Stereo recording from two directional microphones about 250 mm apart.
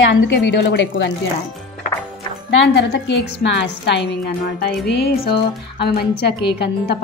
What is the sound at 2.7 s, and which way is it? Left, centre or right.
Speech, left.